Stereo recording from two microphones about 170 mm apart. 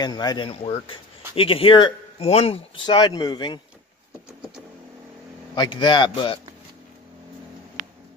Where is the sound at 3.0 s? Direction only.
20° left (ahead or behind).